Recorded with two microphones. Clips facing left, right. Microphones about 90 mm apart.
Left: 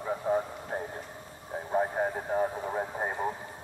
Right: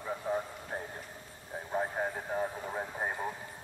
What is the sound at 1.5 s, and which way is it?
Vehicle, 20° left (ahead or behind).